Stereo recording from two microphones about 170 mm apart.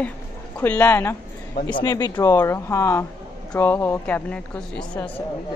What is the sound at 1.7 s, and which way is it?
A woman's voice, 25° left (ahead or behind).